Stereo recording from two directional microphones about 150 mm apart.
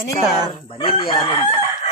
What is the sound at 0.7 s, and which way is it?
Chicken, 35° left (ahead or behind).